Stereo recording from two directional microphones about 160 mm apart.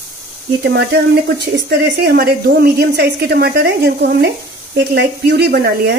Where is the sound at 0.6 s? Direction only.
90° right.